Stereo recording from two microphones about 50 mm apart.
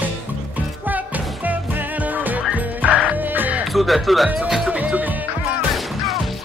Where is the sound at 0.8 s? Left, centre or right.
Right.